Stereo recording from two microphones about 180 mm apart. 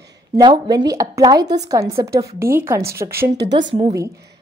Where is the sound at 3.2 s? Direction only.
70° right (ahead or behind).